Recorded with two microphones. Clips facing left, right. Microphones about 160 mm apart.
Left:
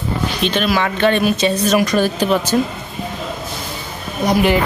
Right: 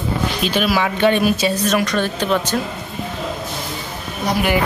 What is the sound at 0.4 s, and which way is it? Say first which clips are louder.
Speech: left 1 dB; 5° right (ahead or behind).